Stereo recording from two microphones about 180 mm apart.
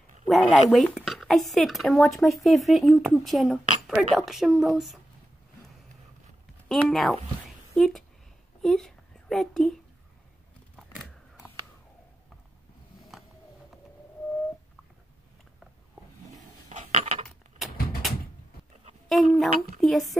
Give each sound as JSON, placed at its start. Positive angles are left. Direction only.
{"t": 0.3, "sound": "speech", "side_deg": 5}
{"t": 6.7, "sound": "speech", "side_deg": 0}
{"t": 7.4, "sound": "a sound", "side_deg": 0}
{"t": 8.6, "sound": "a child's voice", "side_deg": 0}
{"t": 10.8, "sound": "a sound", "side_deg": 0}
{"t": 16.6, "sound": "coin", "side_deg": -40}
{"t": 19.0, "sound": "speech", "side_deg": 0}